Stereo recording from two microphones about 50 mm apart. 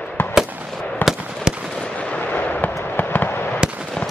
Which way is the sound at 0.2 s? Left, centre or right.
Left.